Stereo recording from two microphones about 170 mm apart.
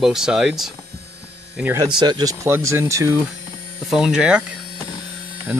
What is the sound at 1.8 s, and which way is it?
Speech, 25° right (ahead or behind).